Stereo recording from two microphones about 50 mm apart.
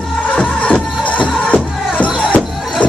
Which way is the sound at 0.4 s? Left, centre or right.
Left.